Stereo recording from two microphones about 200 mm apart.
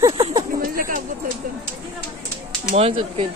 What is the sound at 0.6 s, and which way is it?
Speech, 45° right (ahead or behind).